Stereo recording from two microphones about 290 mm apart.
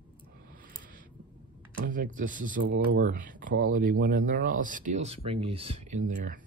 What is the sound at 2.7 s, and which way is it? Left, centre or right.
Speech, right.